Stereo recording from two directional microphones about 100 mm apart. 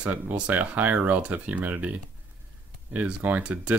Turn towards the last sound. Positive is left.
turn(degrees=-15)  # may be behind; listen again after turning